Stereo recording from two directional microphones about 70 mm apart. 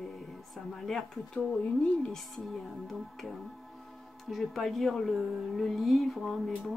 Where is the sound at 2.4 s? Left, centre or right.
Centre.